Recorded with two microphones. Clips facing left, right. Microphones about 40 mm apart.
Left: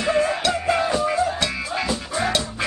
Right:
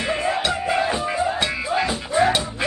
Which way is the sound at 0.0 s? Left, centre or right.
Centre.